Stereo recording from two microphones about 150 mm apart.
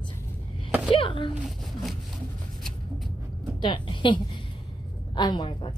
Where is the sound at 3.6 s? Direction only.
30° left (ahead or behind).